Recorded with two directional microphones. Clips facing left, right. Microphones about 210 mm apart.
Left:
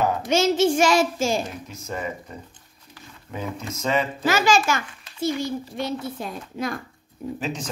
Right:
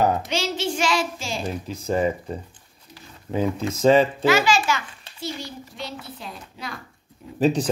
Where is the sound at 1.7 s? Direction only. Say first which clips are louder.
Right 8 dB; 30° right (ahead or behind).